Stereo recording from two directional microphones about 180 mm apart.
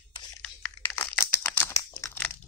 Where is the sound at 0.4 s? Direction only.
10° left (ahead or behind).